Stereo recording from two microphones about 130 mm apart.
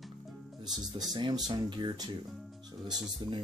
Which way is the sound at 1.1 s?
35° right (ahead or behind).